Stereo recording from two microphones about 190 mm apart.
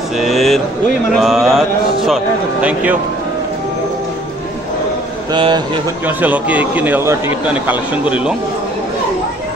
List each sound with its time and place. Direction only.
0.2 s speech: centre (ahead or behind)
5.3 s speech: 25° right (ahead or behind)
6.0 s a man's voice: 10° right (ahead or behind)